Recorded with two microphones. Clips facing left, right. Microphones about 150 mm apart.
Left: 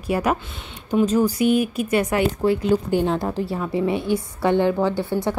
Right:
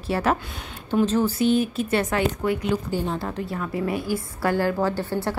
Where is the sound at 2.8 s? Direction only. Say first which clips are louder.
Left 6 dB; 65° left (ahead or behind).